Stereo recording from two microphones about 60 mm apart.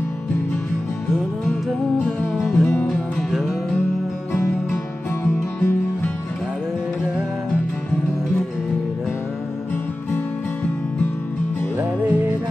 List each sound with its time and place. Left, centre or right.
1.7 s music: centre
2.5 s music: left
3.3 s music: centre
4.3 s music: left
11.8 s music: right